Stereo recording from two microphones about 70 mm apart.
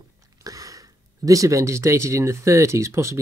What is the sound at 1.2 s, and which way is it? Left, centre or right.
Speech, right.